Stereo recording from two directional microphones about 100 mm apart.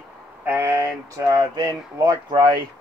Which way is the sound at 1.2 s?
45° right (ahead or behind).